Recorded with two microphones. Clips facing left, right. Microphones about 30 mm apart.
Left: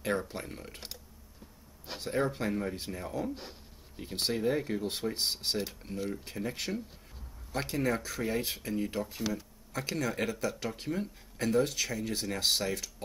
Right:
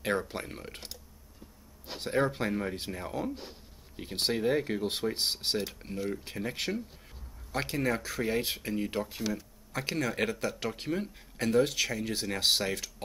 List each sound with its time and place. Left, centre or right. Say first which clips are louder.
0.3 s speech: right 2 dB; centre
2.0 s speech: right 2 dB; centre
9.7 s speech: right 1 dB; right